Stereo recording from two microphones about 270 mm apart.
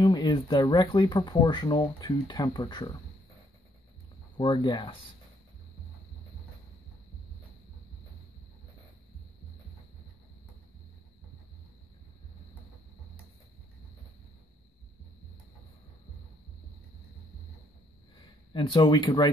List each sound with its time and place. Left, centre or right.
0.0 s speech: centre
4.4 s speech: centre
18.1 s a sound: centre